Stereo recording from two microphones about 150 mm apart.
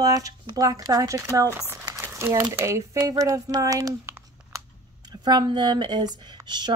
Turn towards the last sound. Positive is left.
turn(degrees=-30)  # may be behind; listen again after turning